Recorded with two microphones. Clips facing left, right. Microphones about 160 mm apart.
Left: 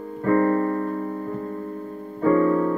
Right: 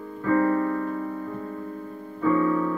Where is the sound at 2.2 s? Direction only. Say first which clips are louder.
Left 3 dB; 45° left (ahead or behind).